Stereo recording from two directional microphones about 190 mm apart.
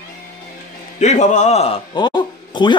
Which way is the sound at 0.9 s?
40° left (ahead or behind).